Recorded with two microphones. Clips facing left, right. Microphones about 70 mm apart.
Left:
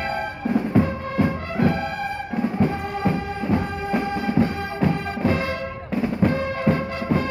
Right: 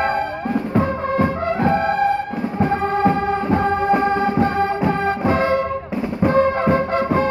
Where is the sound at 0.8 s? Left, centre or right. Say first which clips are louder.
Right 5 dB; right.